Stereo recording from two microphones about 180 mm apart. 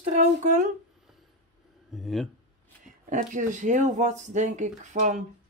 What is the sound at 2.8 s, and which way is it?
Speech, 45° right (ahead or behind).